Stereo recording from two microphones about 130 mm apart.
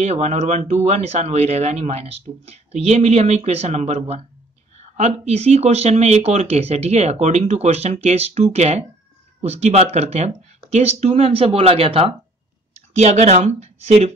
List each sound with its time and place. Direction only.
0.0 s speech: 55° right (ahead or behind)
12.9 s speech: 60° right (ahead or behind)